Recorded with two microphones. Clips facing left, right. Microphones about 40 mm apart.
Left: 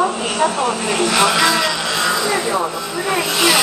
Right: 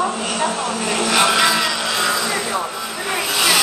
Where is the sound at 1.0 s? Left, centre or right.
Centre.